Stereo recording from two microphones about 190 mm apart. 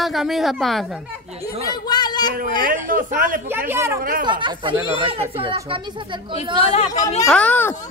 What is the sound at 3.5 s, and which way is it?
Speech, 10° right (ahead or behind).